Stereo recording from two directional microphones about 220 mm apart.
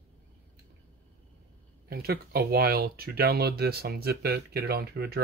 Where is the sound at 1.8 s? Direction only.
45° right (ahead or behind).